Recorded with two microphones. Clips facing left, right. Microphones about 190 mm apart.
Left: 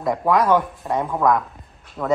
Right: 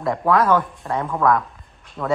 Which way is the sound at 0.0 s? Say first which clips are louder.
Even; 15° left (ahead or behind).